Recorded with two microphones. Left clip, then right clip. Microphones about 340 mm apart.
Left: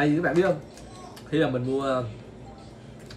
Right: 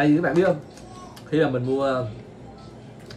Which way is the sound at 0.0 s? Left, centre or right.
Centre.